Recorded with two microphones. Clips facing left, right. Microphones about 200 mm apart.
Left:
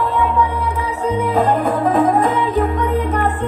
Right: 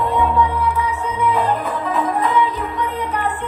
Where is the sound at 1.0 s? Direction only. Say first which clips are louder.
Left 5 dB; 40° left (ahead or behind).